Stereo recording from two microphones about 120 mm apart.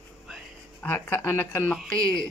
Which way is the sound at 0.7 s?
15° left (ahead or behind).